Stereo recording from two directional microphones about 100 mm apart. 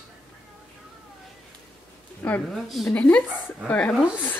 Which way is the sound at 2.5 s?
Centre (ahead or behind).